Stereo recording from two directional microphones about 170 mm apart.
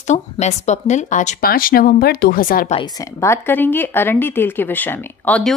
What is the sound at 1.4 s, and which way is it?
Speech, 55° left (ahead or behind).